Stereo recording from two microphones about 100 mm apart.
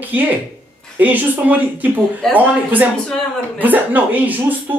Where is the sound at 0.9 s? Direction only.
15° right (ahead or behind).